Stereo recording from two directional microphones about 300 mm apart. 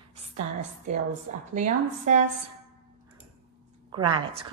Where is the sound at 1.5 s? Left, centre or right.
Right.